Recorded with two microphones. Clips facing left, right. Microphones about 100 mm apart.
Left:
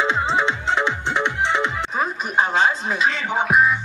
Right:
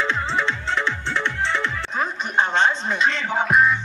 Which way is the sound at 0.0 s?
15° left (ahead or behind).